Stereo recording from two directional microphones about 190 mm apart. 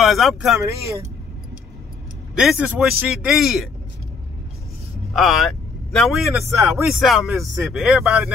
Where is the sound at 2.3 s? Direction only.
5° right (ahead or behind).